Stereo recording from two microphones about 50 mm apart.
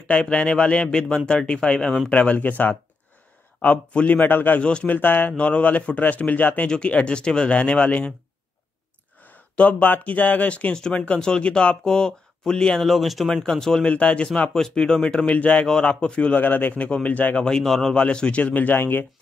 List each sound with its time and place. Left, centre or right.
0.1 s speech: left
4.6 s speech: left
4.8 s a man's voice: left
5.4 s a man's voice: left
9.2 s speech: left
10.7 s speech: centre
12.8 s speech: centre
13.3 s speech: centre
13.8 s speech: left
15.6 s speech: centre
17.4 s speech: centre
17.9 s speech: left
18.4 s a man's voice: left